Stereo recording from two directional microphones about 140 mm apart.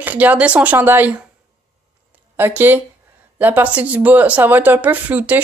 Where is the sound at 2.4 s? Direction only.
15° right (ahead or behind).